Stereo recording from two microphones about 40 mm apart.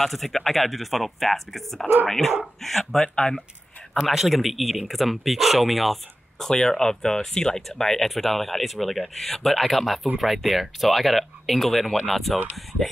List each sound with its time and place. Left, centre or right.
0.0 s speech: centre
3.2 s speech: left
4.1 s speech: centre
6.4 s speech: centre